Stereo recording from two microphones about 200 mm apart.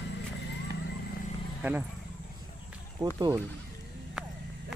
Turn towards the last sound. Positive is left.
turn(degrees=0)  # may be behind; listen again after turning